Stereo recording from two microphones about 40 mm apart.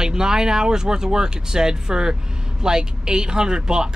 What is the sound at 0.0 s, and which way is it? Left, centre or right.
Speech, centre.